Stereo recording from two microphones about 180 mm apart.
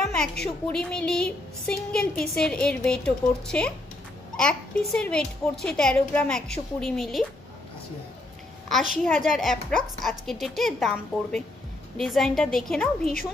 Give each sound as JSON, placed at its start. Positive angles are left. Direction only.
{"t": 0.0, "sound": "music", "side_deg": 5}
{"t": 0.7, "sound": "a child's voice", "side_deg": 5}
{"t": 8.6, "sound": "a child's voice", "side_deg": 0}